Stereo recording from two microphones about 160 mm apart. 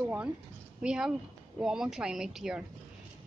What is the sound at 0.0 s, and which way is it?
A woman's voice, 10° right (ahead or behind).